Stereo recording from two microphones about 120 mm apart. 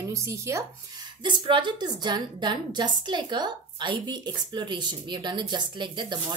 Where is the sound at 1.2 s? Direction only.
40° right (ahead or behind).